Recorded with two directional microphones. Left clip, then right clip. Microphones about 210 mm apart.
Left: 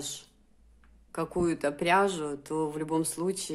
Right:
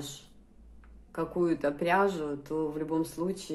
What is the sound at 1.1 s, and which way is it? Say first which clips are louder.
Speech: even; 30° left (ahead or behind).